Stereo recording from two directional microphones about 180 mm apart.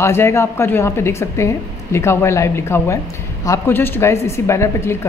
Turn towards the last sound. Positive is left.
turn(degrees=15)  # may be behind; listen again after turning